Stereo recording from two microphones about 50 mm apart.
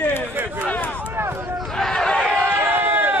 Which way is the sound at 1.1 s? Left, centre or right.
Right.